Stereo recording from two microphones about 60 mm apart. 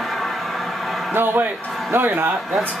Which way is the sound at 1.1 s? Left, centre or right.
Right.